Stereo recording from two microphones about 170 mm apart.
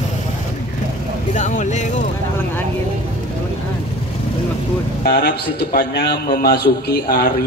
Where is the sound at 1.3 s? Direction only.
45° left (ahead or behind).